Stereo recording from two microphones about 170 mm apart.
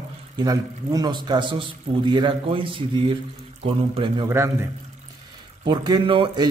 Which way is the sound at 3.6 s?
30° right (ahead or behind).